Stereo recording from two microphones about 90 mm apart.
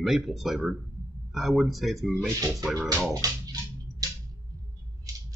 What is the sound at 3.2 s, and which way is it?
Music, 40° right (ahead or behind).